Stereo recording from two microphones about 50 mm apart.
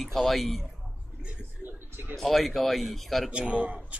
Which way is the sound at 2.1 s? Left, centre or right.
Centre.